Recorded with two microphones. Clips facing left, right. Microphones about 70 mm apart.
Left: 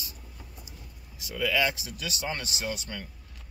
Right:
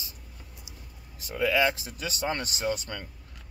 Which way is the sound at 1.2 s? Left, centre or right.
Right.